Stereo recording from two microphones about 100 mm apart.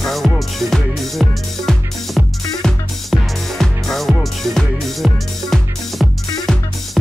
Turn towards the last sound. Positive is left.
turn(degrees=0)  # may be behind; listen again after turning